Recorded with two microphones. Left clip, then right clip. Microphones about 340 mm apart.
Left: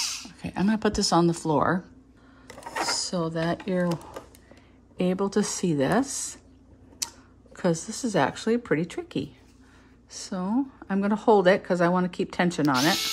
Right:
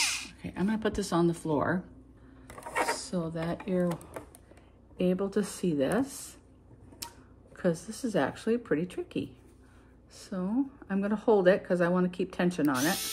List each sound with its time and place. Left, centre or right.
0.4 s speech: centre
3.0 s speech: left
7.5 s speech: left